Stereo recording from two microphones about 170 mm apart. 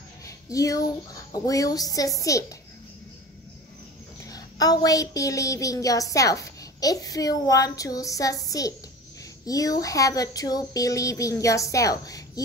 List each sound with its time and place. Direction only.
0.5 s a woman's voice: 20° left (ahead or behind)
4.2 s a woman's voice: 20° left (ahead or behind)